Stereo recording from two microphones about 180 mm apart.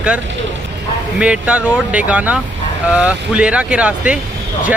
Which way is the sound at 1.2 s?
5° right (ahead or behind).